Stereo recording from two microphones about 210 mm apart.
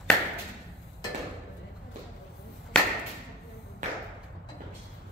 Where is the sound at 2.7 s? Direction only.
5° left (ahead or behind).